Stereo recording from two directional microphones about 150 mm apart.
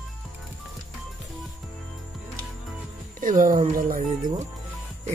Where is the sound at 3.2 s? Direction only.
60° right (ahead or behind).